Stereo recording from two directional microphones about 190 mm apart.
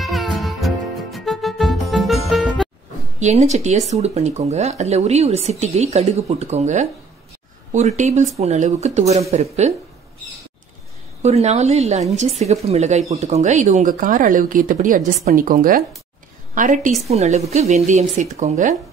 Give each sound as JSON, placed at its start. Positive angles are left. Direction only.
{"t": 0.0, "sound": "music", "side_deg": 0}
{"t": 3.2, "sound": "speech", "side_deg": -40}
{"t": 11.2, "sound": "speech", "side_deg": -35}